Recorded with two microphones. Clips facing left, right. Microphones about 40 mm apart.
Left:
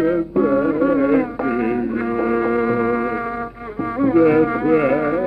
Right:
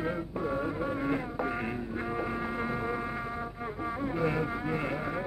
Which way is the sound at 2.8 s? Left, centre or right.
Left.